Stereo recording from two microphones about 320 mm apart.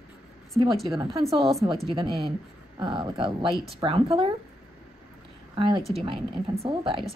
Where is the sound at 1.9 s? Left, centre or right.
Centre.